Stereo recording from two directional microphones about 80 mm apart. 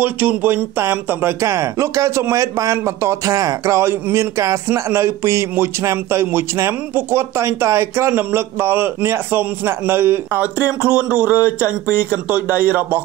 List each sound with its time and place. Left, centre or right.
0.0 s a man's voice: right
1.4 s a man's voice: right